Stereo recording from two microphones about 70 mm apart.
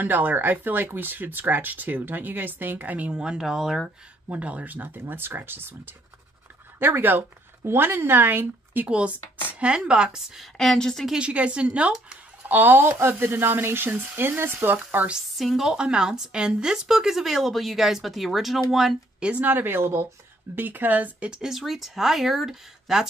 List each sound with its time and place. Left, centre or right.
0.0 s speech: right; by 3.8 s centre
4.3 s speech: centre
8.8 s a woman's voice: centre
10.6 s speech: centre
11.1 s a woman's voice: centre
12.4 s speech: right
15.3 s a woman's voice: centre
19.1 s a sound: centre
19.4 s speech: right
20.5 s speech: right
21.3 s a woman's voice: centre